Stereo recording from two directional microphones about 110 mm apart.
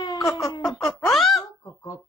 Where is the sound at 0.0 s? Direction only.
35° left (ahead or behind).